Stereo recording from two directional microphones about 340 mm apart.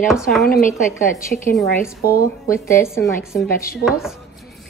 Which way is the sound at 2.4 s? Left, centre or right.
Centre.